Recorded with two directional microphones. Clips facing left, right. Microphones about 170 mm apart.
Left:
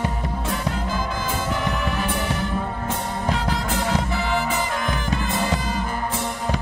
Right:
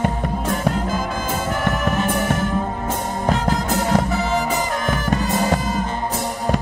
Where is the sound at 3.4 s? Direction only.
45° right (ahead or behind).